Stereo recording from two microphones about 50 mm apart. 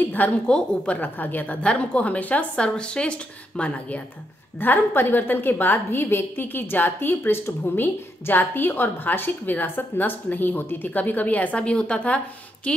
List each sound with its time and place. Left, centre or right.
0.5 s a woman's voice: centre
1.0 s a woman's voice: left
1.6 s a woman's voice: left
2.5 s a woman's voice: left
4.6 s a woman's voice: left